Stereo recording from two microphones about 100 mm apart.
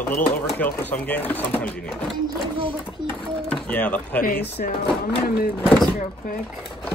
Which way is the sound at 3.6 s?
15° left (ahead or behind).